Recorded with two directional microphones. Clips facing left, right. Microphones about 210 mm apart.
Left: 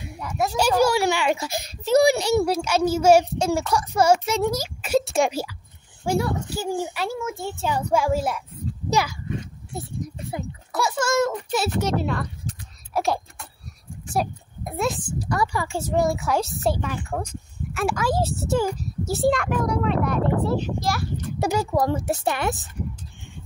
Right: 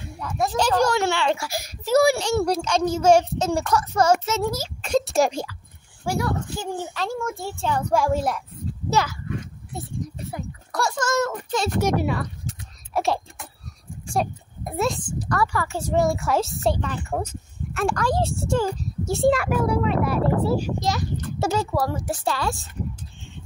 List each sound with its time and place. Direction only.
0.0 s speech: 10° left (ahead or behind)
4.4 s speech: 20° left (ahead or behind)
4.8 s speech: 5° left (ahead or behind)
6.0 s speech: 25° left (ahead or behind)
6.5 s a child's voice: 10° left (ahead or behind)
10.7 s speech: 5° left (ahead or behind)
11.8 s speech: 10° right (ahead or behind)
12.9 s a sound: centre (ahead or behind)
14.1 s a child's voice: centre (ahead or behind)
15.9 s a child's voice: centre (ahead or behind)
17.0 s speech: 5° right (ahead or behind)
17.7 s a child's voice: 5° left (ahead or behind)
20.8 s a child's voice: 20° right (ahead or behind)
21.4 s speech: 15° left (ahead or behind)